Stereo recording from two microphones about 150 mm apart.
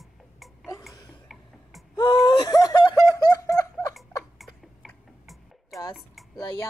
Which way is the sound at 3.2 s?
20° left (ahead or behind).